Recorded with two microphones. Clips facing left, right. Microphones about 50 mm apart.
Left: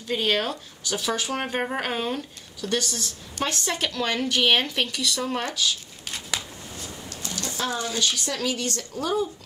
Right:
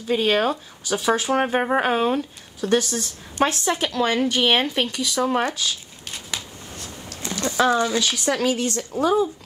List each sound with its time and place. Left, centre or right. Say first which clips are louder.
0.1 s speech: right 5 dB; centre; by 3.0 s right
3.6 s speech: right 5 dB; centre
5.2 s speech: right 7 dB; right
6.0 s a sound: left 1 dB; centre
7.2 s a sound: right 7 dB; right
7.6 s a woman's voice: right 7 dB; right